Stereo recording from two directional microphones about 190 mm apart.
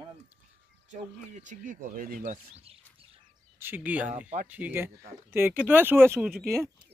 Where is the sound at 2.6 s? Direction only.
30° right (ahead or behind).